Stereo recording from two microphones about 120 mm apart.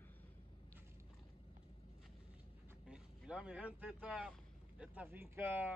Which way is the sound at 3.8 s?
10° right (ahead or behind).